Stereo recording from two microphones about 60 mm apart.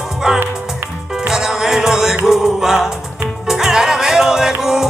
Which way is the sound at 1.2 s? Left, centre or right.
Centre.